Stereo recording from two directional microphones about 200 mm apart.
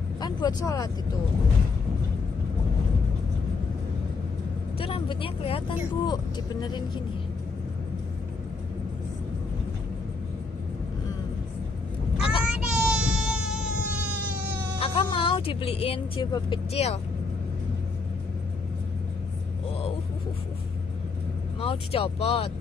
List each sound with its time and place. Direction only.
0.2 s speech: 20° left (ahead or behind)
4.7 s speech: 25° left (ahead or behind)
12.2 s a sound: 25° left (ahead or behind)
12.4 s child singing: 5° right (ahead or behind)
14.8 s speech: 25° left (ahead or behind)
16.7 s speech: 30° left (ahead or behind)
21.5 s speech: 30° left (ahead or behind)